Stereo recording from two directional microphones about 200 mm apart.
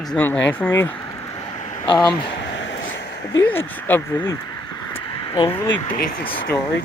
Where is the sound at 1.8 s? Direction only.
25° left (ahead or behind).